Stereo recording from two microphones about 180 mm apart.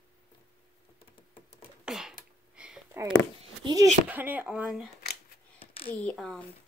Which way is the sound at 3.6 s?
20° right (ahead or behind).